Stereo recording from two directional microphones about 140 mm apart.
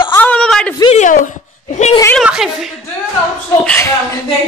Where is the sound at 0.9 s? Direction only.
65° left (ahead or behind).